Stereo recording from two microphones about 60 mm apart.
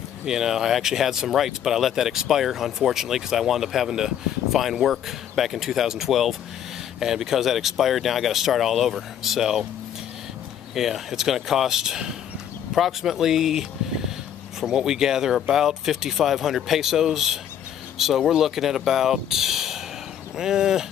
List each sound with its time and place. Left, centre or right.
0.2 s speech: centre
10.7 s speech: centre